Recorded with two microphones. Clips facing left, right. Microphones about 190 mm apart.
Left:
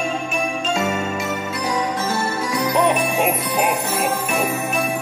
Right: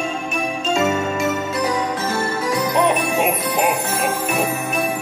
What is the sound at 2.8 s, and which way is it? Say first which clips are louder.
Music: even; centre (ahead or behind).